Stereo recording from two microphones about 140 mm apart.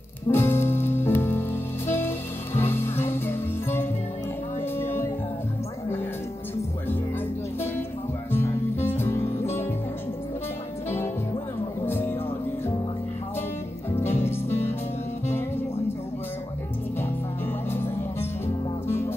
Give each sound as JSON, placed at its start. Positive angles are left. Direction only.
{"t": 0.3, "sound": "music", "side_deg": 15}
{"t": 8.3, "sound": "music", "side_deg": 15}
{"t": 11.8, "sound": "music", "side_deg": 15}
{"t": 13.9, "sound": "music", "side_deg": 15}
{"t": 18.9, "sound": "music", "side_deg": 20}